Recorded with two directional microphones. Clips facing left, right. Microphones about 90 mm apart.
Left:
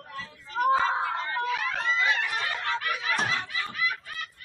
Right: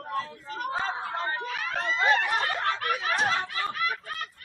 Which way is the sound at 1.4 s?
45° right (ahead or behind).